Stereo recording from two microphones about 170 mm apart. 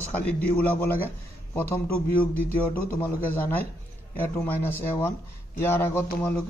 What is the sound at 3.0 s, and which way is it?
Speech, 15° left (ahead or behind).